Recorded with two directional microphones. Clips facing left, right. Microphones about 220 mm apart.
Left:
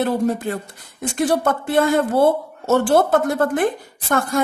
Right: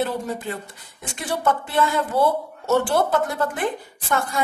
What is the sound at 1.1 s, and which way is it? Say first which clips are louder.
Speech: left 5 dB; 45° left (ahead or behind).